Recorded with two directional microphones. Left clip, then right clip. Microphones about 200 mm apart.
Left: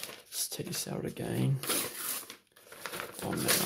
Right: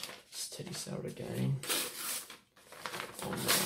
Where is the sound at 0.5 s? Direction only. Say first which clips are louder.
Left 4 dB; 50° left (ahead or behind).